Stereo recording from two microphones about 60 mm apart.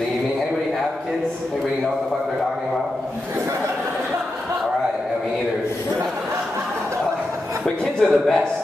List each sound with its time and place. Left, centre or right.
7.6 s a man's voice: centre